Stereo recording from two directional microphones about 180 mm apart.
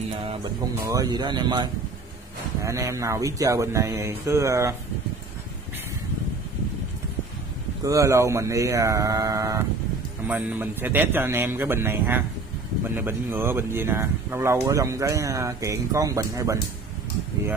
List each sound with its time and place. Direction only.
0.8 s speech: 20° right (ahead or behind)
7.8 s speech: 15° right (ahead or behind)